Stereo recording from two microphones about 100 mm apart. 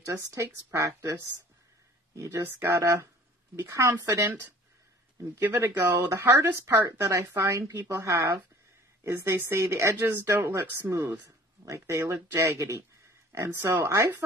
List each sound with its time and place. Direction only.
0.0 s speech: 30° right (ahead or behind)
2.1 s speech: 25° right (ahead or behind)
5.5 s speech: 25° right (ahead or behind)